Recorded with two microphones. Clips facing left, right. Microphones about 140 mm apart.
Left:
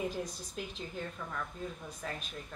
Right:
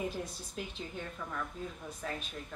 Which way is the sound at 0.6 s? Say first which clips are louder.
Even; centre (ahead or behind).